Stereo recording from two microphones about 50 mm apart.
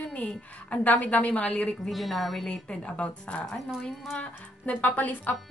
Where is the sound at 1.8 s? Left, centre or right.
Centre.